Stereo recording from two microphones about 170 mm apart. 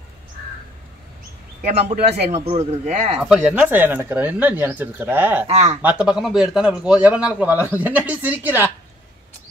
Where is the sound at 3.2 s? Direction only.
5° right (ahead or behind).